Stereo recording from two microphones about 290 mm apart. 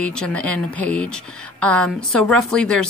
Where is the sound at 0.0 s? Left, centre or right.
Centre.